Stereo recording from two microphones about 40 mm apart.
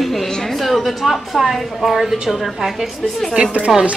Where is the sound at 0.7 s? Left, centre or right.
Centre.